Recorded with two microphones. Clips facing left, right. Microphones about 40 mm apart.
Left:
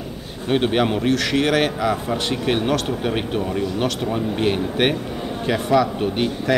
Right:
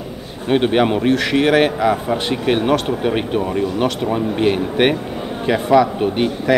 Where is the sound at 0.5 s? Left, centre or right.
Centre.